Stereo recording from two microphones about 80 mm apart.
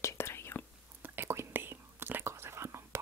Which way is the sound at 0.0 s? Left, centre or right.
Left.